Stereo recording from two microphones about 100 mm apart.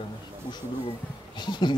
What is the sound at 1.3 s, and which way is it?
Speech, 50° left (ahead or behind).